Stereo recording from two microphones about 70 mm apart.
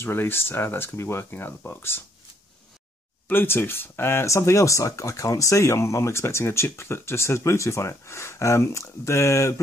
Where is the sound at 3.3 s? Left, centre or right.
Left.